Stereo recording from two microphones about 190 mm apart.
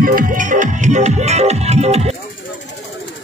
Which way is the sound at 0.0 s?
45° right (ahead or behind).